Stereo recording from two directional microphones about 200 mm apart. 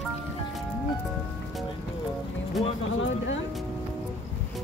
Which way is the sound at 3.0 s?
70° left (ahead or behind).